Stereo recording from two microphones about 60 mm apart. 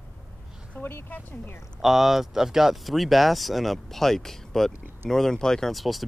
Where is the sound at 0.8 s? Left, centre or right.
Left.